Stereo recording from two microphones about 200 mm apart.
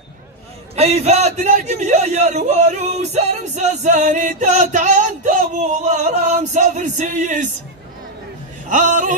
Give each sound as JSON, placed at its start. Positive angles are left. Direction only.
{"t": 0.7, "sound": "a man's voice", "side_deg": -30}
{"t": 8.6, "sound": "a man's voice", "side_deg": -40}